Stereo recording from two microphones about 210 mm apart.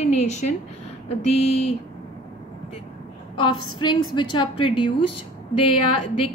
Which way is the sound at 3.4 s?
90° left.